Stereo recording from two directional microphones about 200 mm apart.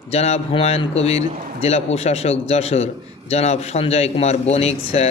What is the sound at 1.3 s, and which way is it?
Speech, 40° right (ahead or behind).